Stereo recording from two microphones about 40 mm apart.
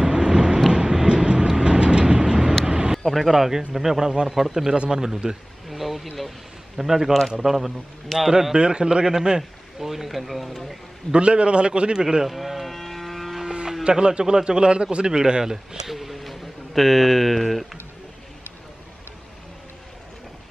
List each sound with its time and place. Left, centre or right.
0.0 s vehicle: centre
3.1 s speech: centre
5.7 s vehicle: centre
6.8 s speech: centre
8.5 s a man's voice: right; by 10.8 s centre
11.1 s a man's voice: right
12.0 s speech: centre
12.3 s a sound: centre
13.4 s livestock: centre
13.8 s a man's voice: right; by 17.6 s centre